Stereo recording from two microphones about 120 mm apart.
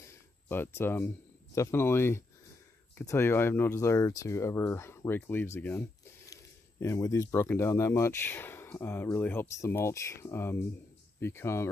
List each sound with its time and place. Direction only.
0.1 s speech: 20° left (ahead or behind)